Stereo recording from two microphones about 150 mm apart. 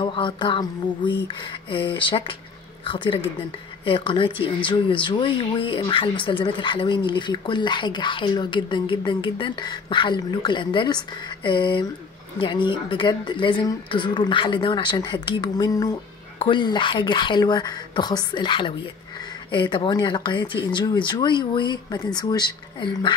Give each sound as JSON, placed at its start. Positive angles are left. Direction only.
{"t": 0.0, "sound": "speech", "side_deg": 35}
{"t": 16.3, "sound": "speech", "side_deg": 35}